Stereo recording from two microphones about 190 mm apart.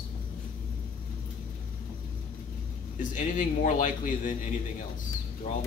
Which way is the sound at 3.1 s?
45° left (ahead or behind).